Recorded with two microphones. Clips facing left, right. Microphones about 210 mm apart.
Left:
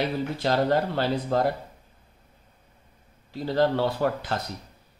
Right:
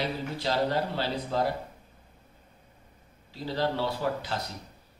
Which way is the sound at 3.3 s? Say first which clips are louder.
Left 6 dB; 55° left (ahead or behind).